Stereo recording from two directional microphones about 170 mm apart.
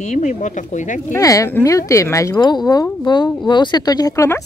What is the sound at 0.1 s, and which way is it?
Speech, 45° left (ahead or behind).